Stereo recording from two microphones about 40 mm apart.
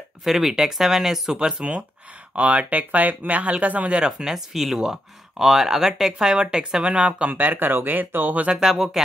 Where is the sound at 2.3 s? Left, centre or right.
Right.